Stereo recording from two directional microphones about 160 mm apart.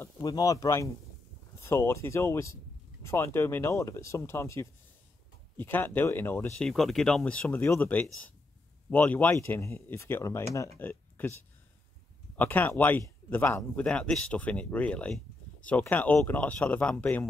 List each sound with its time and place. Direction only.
0.2 s speech: 25° left (ahead or behind)
6.7 s speech: centre (ahead or behind); by 10.7 s 20° left (ahead or behind)
10.8 s a sound: 10° left (ahead or behind)
12.4 s speech: 10° left (ahead or behind)